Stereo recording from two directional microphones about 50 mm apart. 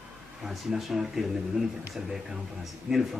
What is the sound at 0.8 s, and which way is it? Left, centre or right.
Speech, centre.